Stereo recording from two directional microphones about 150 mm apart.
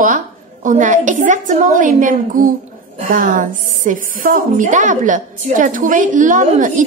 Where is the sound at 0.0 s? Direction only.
60° right (ahead or behind).